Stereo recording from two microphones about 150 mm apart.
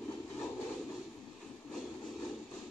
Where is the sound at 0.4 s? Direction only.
5° left (ahead or behind).